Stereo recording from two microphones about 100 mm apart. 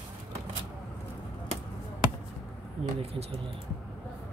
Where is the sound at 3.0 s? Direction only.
85° right.